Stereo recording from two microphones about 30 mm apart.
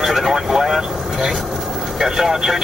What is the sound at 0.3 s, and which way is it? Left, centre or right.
Speech, centre.